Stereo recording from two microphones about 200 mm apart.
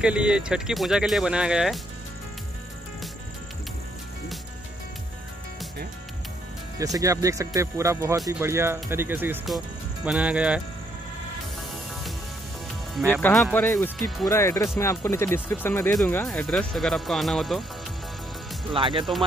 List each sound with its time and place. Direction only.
0.0 s speech: 5° right (ahead or behind)
6.8 s speech: 15° right (ahead or behind)
13.1 s speech: 10° left (ahead or behind)
18.7 s speech: 25° right (ahead or behind)